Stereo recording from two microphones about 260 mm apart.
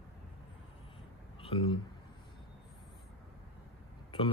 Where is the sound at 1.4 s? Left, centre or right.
Centre.